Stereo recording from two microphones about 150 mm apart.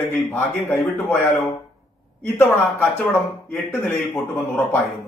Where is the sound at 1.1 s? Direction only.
15° left (ahead or behind).